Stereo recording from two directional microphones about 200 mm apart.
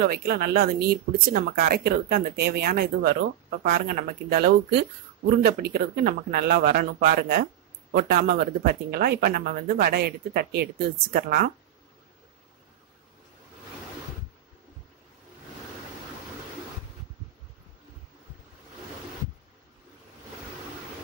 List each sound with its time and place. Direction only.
0.0 s speech: 50° right (ahead or behind)